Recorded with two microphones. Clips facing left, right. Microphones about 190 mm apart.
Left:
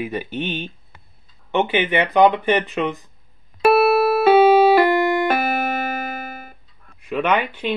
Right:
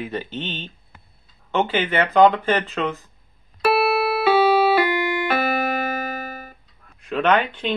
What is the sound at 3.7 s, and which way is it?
Music, 45° left (ahead or behind).